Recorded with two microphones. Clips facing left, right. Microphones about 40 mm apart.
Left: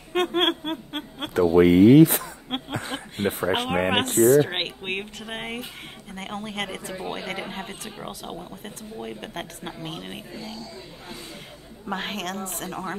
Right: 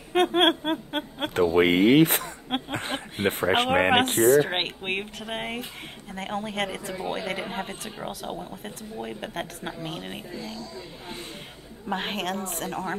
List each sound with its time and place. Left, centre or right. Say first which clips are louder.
0.1 s a sound: right 2 dB; centre
1.3 s speech: left 4 dB; right
2.7 s a sound: right 1 dB; right
3.3 s speech: right 2 dB; right
4.2 s speech: left 6 dB; centre
10.3 s speech: right 1 dB; left
11.9 s speech: right 1 dB; centre